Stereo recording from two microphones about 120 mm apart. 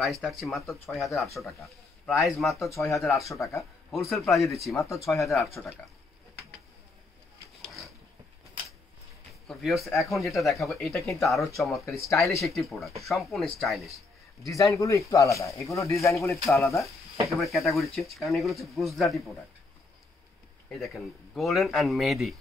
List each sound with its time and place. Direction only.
0.2 s speech: centre (ahead or behind)
3.3 s speech: 25° left (ahead or behind)
3.9 s speech: centre (ahead or behind)
4.8 s speech: 25° left (ahead or behind)
5.1 s speech: centre (ahead or behind)
9.5 s speech: centre (ahead or behind)
11.8 s speech: 25° left (ahead or behind)
12.4 s a man's voice: centre (ahead or behind)
14.5 s speech: 25° left (ahead or behind)
17.4 s speech: centre (ahead or behind)
20.8 s speech: centre (ahead or behind)